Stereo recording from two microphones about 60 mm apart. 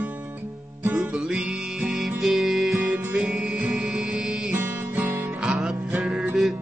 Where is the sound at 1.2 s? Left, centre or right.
Centre.